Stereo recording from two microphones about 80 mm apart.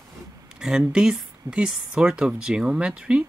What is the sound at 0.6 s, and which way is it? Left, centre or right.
Speech, centre.